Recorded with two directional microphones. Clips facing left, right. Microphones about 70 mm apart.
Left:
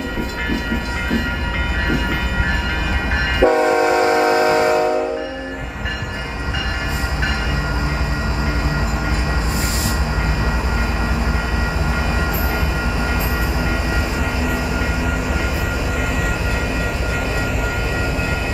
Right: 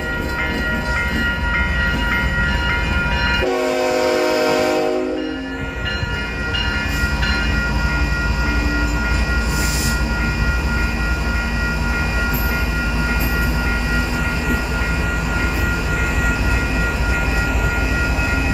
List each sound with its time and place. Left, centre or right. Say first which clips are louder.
3.4 s train: left 6 dB; left